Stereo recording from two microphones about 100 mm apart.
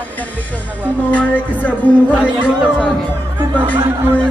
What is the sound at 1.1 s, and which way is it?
Music, 15° left (ahead or behind).